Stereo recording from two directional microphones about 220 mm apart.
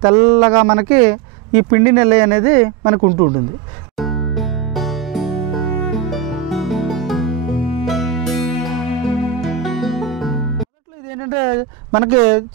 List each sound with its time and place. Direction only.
0.0 s speech: 20° right (ahead or behind)
4.0 s music: centre (ahead or behind)
11.1 s speech: 15° right (ahead or behind)